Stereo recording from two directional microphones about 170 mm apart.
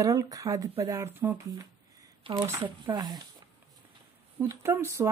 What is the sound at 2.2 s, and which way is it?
Speech, 30° right (ahead or behind).